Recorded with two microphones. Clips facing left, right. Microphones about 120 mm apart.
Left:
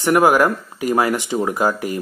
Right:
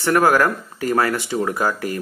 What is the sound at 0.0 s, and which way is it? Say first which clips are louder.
Speech: left 2 dB; 15° left (ahead or behind).